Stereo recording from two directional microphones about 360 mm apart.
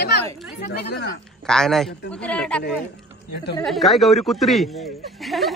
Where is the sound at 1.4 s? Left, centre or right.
Centre.